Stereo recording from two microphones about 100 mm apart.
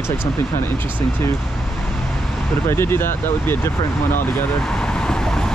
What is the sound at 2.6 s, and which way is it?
Speech, 25° left (ahead or behind).